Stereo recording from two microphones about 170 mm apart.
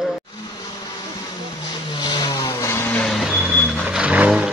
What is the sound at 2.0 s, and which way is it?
Vehicle, 25° left (ahead or behind).